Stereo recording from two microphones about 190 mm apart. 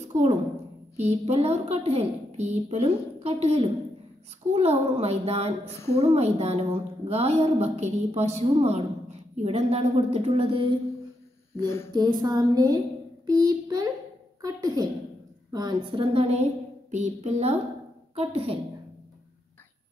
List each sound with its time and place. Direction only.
0.0 s a child's voice: 35° right (ahead or behind)
11.6 s a woman's voice: 15° left (ahead or behind)
11.9 s a woman's voice: 20° right (ahead or behind)
14.4 s a sound: 20° right (ahead or behind)
15.5 s a woman's voice: 25° right (ahead or behind)